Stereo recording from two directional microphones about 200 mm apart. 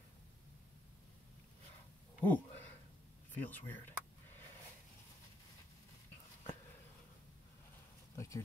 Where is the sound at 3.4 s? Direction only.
10° left (ahead or behind).